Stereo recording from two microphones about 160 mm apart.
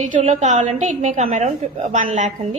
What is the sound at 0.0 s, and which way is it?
A woman's voice, 45° right (ahead or behind).